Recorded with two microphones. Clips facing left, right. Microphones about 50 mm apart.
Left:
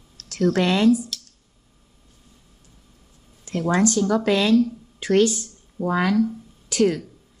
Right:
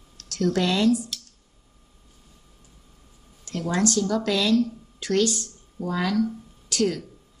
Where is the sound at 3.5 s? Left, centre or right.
Left.